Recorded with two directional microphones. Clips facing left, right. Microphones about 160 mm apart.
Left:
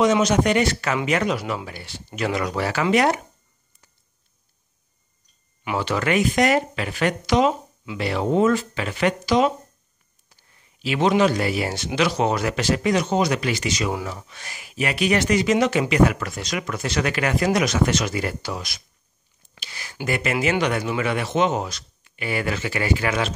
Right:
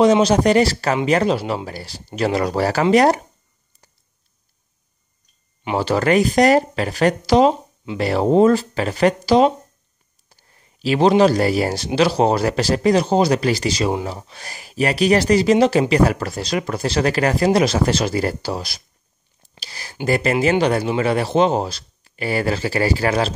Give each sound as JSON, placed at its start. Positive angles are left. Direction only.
{"t": 0.0, "sound": "speech", "side_deg": -30}
{"t": 5.6, "sound": "speech", "side_deg": -30}
{"t": 19.6, "sound": "a sound", "side_deg": -35}
{"t": 20.1, "sound": "speech", "side_deg": -35}